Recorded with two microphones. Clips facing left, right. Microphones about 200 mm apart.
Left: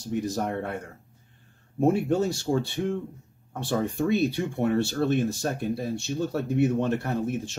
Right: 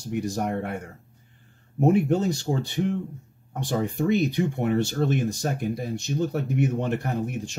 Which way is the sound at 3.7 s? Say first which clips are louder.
Right 1 dB; 20° right (ahead or behind).